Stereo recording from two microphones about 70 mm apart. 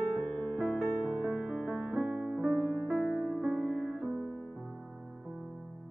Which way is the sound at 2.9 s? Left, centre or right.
Centre.